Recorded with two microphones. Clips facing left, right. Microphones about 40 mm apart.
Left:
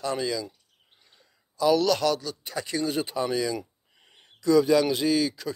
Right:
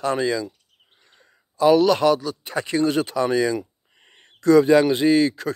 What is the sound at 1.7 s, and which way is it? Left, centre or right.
Speech, right.